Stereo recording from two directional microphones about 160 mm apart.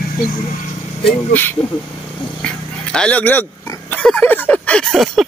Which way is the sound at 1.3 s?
10° left (ahead or behind).